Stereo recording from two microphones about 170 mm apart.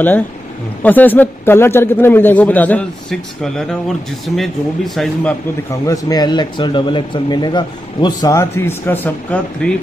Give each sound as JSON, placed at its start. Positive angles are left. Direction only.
{"t": 0.8, "sound": "a man's voice", "side_deg": 10}
{"t": 5.9, "sound": "speech", "side_deg": 20}